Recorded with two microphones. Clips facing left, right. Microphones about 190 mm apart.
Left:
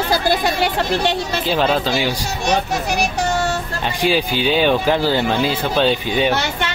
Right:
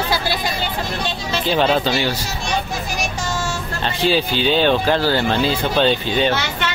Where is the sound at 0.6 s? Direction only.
70° left (ahead or behind).